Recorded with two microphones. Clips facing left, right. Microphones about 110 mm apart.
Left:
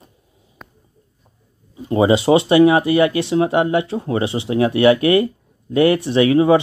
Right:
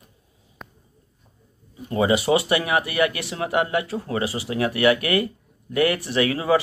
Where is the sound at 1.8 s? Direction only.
25° left (ahead or behind).